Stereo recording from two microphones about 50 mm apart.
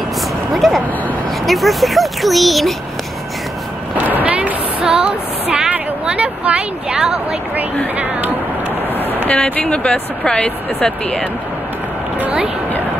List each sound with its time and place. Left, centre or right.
0.5 s speech: centre
4.0 s a sound: right
5.5 s speech: right
8.9 s vehicle: right
9.6 s speech: centre